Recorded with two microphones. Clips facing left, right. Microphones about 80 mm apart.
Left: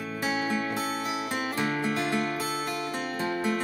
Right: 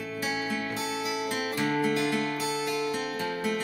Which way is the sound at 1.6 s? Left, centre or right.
Left.